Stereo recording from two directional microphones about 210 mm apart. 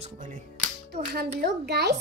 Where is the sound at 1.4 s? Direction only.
50° right (ahead or behind).